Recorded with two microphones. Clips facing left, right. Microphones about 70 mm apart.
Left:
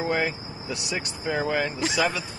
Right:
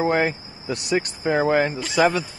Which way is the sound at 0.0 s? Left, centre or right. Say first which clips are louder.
Right 5 dB; right.